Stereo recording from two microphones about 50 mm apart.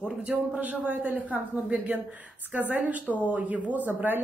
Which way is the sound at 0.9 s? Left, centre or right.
Right.